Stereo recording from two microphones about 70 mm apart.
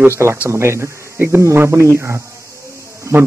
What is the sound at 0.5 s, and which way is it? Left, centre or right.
Speech, right.